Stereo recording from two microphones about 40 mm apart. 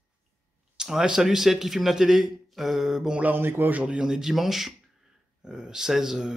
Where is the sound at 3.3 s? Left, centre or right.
Right.